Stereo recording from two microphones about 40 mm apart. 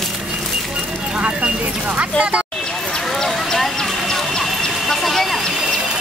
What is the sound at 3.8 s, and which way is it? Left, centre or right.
Vehicle, centre.